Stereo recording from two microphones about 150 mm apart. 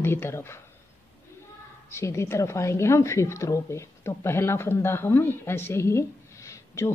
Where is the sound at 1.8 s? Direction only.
20° left (ahead or behind).